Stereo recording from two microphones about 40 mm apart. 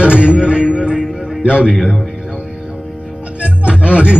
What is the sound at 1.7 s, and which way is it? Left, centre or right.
Speech, centre.